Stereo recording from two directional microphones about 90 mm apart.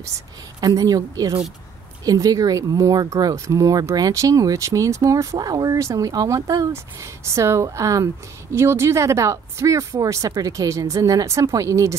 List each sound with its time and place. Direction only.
0.6 s a woman's voice: 45° right (ahead or behind)